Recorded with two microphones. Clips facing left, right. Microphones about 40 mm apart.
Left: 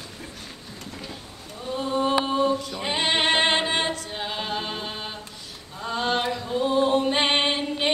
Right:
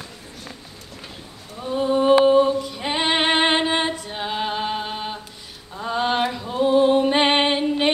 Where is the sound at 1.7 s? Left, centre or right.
Centre.